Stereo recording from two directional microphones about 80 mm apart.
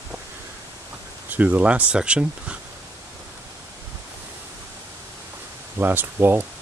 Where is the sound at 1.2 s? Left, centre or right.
Right.